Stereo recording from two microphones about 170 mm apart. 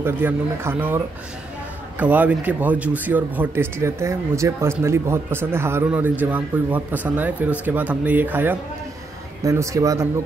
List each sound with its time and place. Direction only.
0.0 s speech: 15° right (ahead or behind)